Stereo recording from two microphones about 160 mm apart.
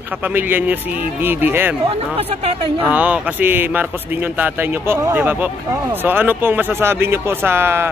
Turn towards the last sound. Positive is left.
turn(degrees=-15)  # may be behind; listen again after turning